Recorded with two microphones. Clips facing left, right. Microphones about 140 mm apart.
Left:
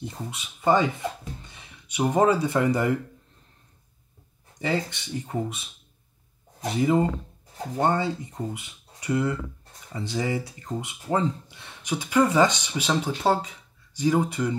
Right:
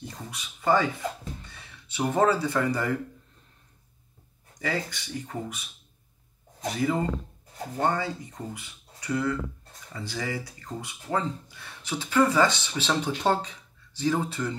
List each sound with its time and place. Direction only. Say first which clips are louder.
0.3 s speech: left 2 dB; 20° left (ahead or behind)
4.6 s speech: left 4 dB; 25° left (ahead or behind)